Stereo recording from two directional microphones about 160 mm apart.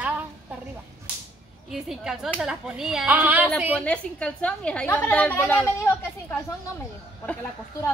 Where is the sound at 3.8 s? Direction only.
10° left (ahead or behind).